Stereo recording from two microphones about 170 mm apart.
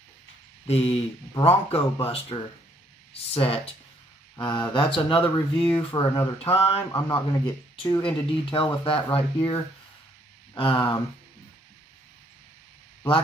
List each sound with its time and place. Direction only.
0.7 s speech: 35° left (ahead or behind)
6.9 s speech: 20° left (ahead or behind)